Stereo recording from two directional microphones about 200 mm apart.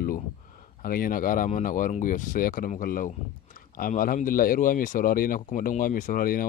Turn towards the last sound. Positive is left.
turn(degrees=45)  # may be behind; listen again after turning